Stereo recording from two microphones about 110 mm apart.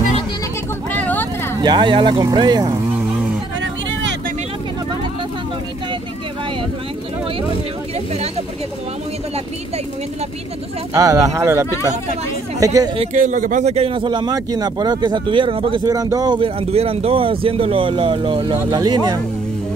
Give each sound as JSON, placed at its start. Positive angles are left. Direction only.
{"t": 0.9, "sound": "vehicle", "side_deg": 15}
{"t": 1.6, "sound": "speech", "side_deg": -45}
{"t": 10.9, "sound": "speech", "side_deg": -30}
{"t": 12.9, "sound": "speech", "side_deg": -80}
{"t": 15.8, "sound": "speech", "side_deg": -35}
{"t": 16.3, "sound": "speech", "side_deg": -55}
{"t": 18.7, "sound": "speech", "side_deg": -40}